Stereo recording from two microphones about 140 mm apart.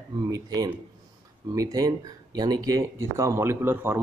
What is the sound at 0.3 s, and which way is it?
Speech, 25° right (ahead or behind).